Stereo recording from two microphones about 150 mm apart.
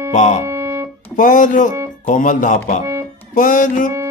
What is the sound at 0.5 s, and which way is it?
Music, 20° right (ahead or behind).